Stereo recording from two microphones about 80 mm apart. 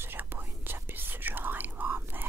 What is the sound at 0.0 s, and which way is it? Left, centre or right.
Whispering, right.